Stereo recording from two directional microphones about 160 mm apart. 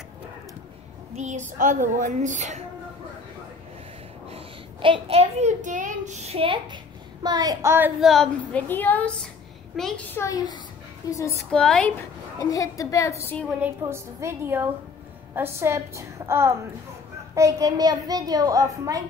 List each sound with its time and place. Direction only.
1.1 s a woman's voice: 50° right (ahead or behind)
4.8 s a child's voice: 35° right (ahead or behind); by 7.9 s 15° right (ahead or behind)
8.0 s a woman's voice: centre (ahead or behind)
8.6 s a woman's voice: 10° left (ahead or behind)
10.1 s a woman's voice: 20° left (ahead or behind)
11.5 s a woman's voice: 5° left (ahead or behind)
12.4 s a woman's voice: 20° left (ahead or behind)
13.6 s a woman's voice: 15° right (ahead or behind)